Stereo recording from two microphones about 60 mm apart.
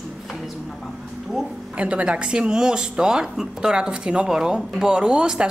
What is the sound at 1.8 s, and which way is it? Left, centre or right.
Speech, right.